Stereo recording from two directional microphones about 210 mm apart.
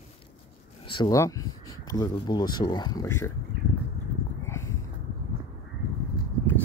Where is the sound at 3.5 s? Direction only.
45° right (ahead or behind).